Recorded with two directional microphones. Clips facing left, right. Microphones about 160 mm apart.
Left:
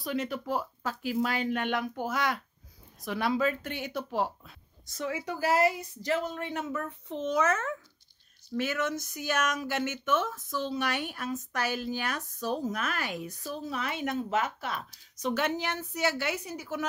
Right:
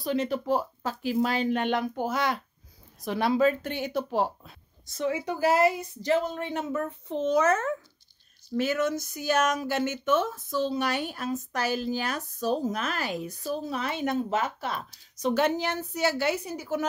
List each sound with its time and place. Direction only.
0.0 s speech: 30° right (ahead or behind)